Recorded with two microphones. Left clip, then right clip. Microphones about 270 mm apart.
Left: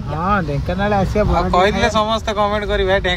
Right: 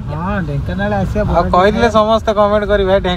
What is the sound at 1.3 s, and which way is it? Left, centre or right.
Speech, centre.